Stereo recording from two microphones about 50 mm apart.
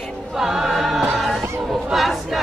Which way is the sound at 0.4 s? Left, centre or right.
Centre.